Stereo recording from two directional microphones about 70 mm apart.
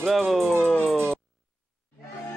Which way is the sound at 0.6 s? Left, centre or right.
Centre.